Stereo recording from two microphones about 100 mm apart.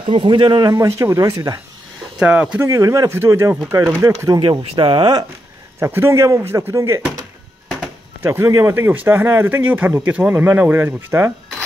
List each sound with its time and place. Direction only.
0.1 s speech: 55° right (ahead or behind)
0.7 s speech: 30° right (ahead or behind)
2.1 s speech: 10° right (ahead or behind)
2.6 s speech: 35° right (ahead or behind)
4.4 s speech: 55° right (ahead or behind)
5.8 s speech: 25° right (ahead or behind)
8.2 s speech: 25° right (ahead or behind)
8.7 s speech: 20° right (ahead or behind)